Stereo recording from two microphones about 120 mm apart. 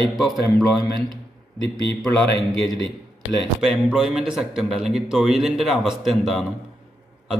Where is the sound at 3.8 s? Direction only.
5° right (ahead or behind).